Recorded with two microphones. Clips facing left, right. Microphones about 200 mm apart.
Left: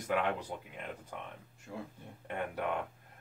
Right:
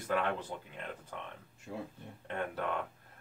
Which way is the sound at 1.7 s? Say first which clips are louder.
Right 2 dB; 15° right (ahead or behind).